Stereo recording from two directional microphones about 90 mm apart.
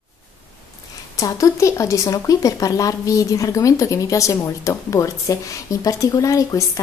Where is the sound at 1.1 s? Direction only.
35° left (ahead or behind).